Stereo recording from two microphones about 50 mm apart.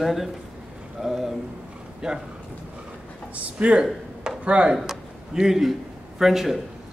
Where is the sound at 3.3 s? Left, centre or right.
Right.